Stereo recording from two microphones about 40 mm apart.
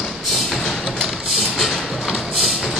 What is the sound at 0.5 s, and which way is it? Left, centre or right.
Music, centre.